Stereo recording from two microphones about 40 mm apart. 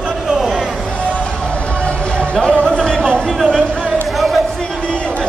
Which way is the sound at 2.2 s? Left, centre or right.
Left.